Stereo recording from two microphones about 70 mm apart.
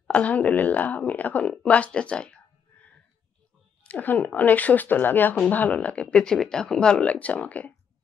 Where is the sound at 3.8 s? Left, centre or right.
Left.